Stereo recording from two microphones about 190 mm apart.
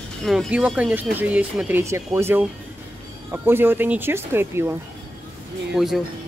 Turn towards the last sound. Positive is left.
turn(degrees=0)  # may be behind; listen again after turning